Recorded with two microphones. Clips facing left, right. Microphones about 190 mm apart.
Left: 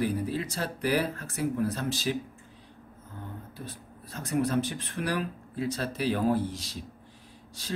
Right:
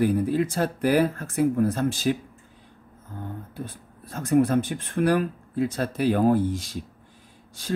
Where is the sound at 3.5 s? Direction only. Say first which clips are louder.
Right 5 dB; 50° right (ahead or behind).